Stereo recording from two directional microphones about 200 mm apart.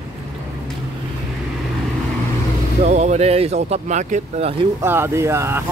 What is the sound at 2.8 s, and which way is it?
Speech, 35° right (ahead or behind).